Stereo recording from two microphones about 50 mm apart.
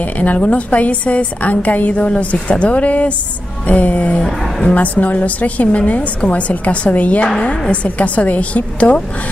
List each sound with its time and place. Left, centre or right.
0.0 s a woman's voice: left
4.2 s speech: centre
4.6 s a woman's voice: left
7.2 s a woman's voice: centre